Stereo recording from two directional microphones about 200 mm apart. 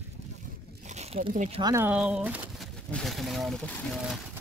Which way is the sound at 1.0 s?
30° right (ahead or behind).